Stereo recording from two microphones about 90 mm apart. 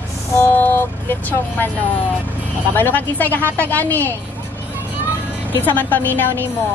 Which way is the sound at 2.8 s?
20° left (ahead or behind).